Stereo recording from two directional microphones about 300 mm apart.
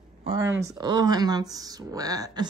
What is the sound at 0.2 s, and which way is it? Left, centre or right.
Speech, centre.